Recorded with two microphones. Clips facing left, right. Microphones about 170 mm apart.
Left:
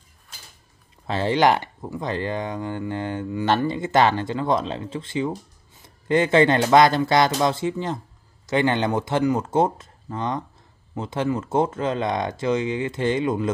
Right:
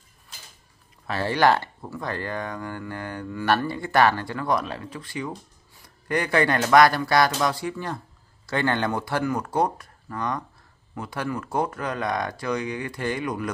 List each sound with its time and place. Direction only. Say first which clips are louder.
1.0 s speech: left 2 dB; 20° left (ahead or behind)